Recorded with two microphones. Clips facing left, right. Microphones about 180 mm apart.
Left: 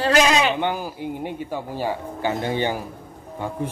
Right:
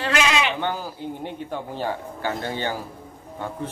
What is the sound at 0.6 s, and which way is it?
Speech, 15° left (ahead or behind).